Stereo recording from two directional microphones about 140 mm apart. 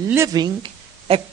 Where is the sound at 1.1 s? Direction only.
45° right (ahead or behind).